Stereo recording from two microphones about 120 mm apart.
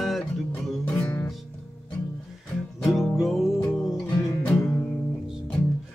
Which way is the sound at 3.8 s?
25° left (ahead or behind).